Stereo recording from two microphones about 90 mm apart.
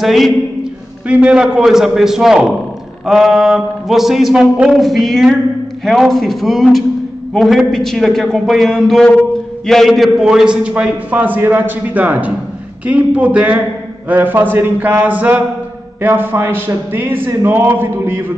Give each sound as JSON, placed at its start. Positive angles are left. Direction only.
{"t": 0.0, "sound": "a man's voice", "side_deg": -5}